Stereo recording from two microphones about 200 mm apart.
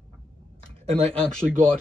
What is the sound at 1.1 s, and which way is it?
Speech, 5° left (ahead or behind).